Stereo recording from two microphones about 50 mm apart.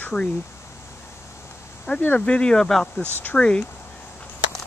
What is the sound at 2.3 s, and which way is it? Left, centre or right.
Speech, centre.